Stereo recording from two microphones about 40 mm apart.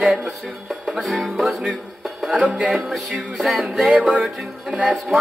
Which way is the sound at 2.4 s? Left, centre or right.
Right.